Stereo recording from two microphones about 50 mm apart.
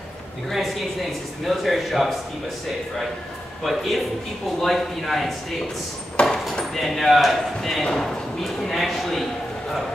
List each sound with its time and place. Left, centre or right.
0.5 s a man's voice: centre
3.6 s a man's voice: centre
6.2 s a sound: left
6.6 s a man's voice: centre